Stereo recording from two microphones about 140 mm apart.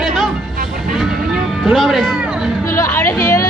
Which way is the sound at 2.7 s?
20° left (ahead or behind).